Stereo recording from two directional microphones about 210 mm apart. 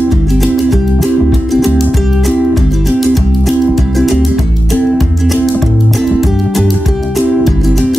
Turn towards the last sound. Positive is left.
turn(degrees=0)  # may be behind; listen again after turning